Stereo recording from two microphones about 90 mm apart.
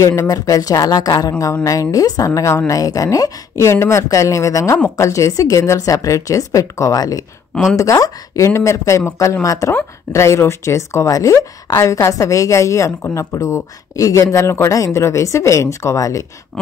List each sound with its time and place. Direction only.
0.1 s a woman's voice: 35° left (ahead or behind)